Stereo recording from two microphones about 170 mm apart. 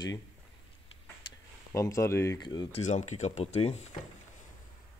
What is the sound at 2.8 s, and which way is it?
Speech, 45° left (ahead or behind).